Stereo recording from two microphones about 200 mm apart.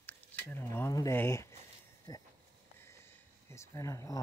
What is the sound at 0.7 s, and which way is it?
Speech, 15° left (ahead or behind).